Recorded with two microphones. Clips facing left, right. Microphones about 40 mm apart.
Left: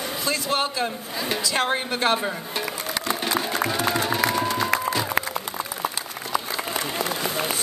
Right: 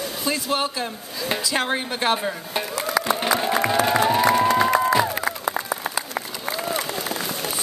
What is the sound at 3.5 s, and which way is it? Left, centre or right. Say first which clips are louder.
Music: right 4 dB; centre.